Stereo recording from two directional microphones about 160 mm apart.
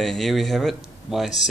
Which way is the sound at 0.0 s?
Centre (ahead or behind).